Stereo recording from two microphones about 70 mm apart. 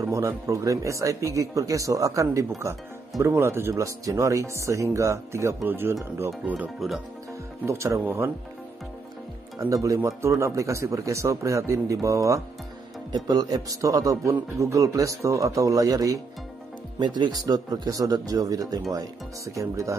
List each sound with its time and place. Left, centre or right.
0.0 s a man's voice: right
3.7 s speech: right
5.7 s speech: right
7.6 s speech: right
9.6 s speech: right
13.1 s speech: right
17.0 s speech: right